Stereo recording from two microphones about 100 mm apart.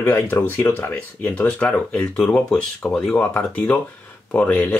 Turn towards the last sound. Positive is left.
turn(degrees=15)  # may be behind; listen again after turning